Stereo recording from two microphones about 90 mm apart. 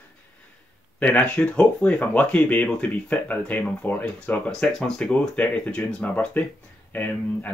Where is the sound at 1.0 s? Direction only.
15° left (ahead or behind).